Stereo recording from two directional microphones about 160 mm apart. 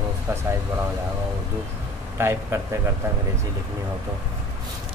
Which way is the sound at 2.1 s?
15° right (ahead or behind).